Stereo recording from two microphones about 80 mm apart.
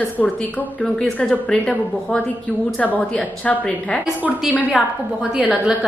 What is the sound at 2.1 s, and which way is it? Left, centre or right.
A woman's voice, centre.